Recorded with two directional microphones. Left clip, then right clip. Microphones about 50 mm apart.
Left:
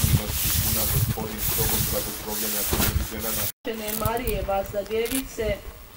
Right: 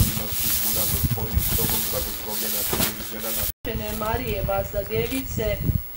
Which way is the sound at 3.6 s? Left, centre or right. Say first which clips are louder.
Right 1 dB; right.